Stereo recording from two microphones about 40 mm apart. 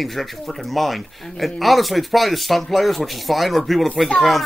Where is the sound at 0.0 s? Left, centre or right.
Centre.